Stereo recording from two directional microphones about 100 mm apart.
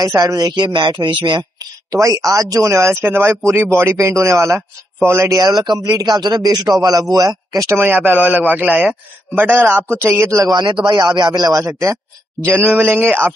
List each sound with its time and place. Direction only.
0.0 s speech: 35° right (ahead or behind)
7.8 s a man's voice: 20° right (ahead or behind)
10.5 s a man's voice: 50° right (ahead or behind); by 12.0 s 30° right (ahead or behind)
12.4 s a man's voice: 20° right (ahead or behind)